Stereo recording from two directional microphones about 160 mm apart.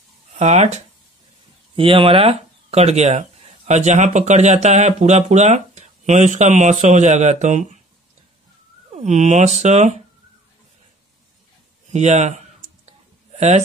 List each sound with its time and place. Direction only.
0.4 s speech: 45° right (ahead or behind)
1.8 s speech: 35° right (ahead or behind)
8.9 s speech: 45° right (ahead or behind)
11.9 s clicking: 45° right (ahead or behind)